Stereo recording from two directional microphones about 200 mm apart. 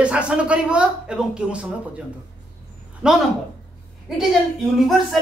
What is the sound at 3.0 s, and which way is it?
Speech, 5° right (ahead or behind).